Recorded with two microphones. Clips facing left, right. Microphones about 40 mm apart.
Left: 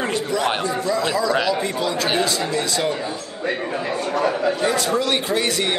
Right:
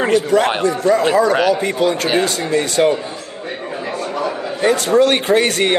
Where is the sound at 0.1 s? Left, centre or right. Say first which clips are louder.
Right 7 dB; right.